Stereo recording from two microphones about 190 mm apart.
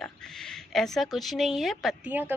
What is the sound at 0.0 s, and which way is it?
Speech, 5° left (ahead or behind).